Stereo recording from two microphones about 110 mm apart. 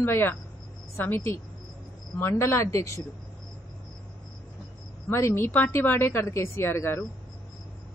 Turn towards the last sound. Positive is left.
turn(degrees=20)  # may be behind; listen again after turning